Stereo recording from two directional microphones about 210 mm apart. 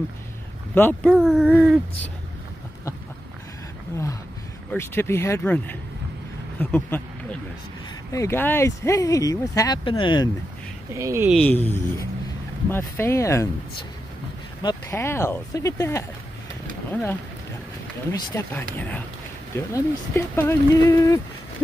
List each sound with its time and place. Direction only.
0.7 s speech: 10° left (ahead or behind)
1.1 s speech: centre (ahead or behind)
4.7 s speech: 10° left (ahead or behind)
10.9 s speech: 15° right (ahead or behind)
11.2 s speech: 5° left (ahead or behind)
18.3 s speech: 10° left (ahead or behind)